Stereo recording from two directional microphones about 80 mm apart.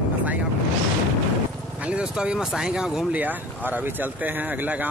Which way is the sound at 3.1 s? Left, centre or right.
Right.